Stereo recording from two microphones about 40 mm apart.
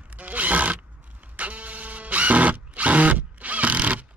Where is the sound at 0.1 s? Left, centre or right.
Right.